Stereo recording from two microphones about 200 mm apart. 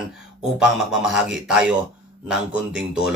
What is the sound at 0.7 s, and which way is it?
Speech, centre (ahead or behind).